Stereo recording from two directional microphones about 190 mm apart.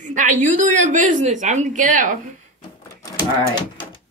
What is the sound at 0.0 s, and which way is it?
A woman's voice, 40° right (ahead or behind).